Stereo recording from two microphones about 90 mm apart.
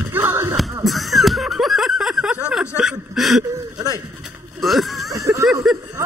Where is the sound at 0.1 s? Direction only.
25° right (ahead or behind).